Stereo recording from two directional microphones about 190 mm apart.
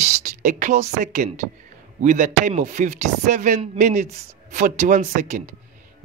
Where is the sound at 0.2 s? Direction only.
40° right (ahead or behind).